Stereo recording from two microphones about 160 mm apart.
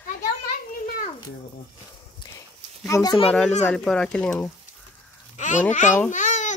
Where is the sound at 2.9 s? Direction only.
20° left (ahead or behind).